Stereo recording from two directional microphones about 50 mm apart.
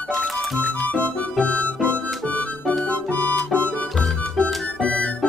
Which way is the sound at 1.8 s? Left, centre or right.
Left.